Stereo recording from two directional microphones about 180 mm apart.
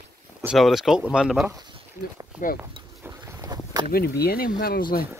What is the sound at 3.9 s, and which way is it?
Speech, 60° left (ahead or behind).